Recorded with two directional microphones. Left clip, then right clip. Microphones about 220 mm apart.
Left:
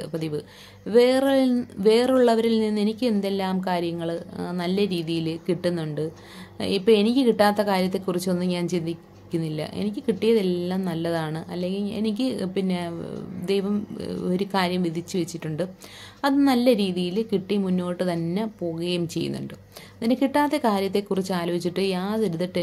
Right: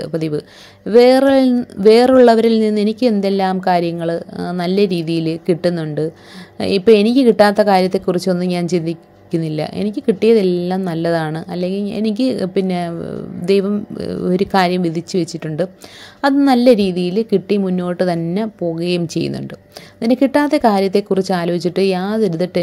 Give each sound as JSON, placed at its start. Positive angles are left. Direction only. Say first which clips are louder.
{"t": 0.0, "sound": "a woman's voice", "louder": "right 9 dB", "side_deg": -30}